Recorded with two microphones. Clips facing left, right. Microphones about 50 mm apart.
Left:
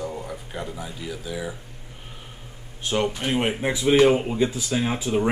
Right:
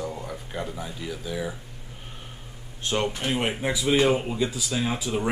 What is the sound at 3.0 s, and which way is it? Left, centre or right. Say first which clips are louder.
Speech: left 3 dB; centre.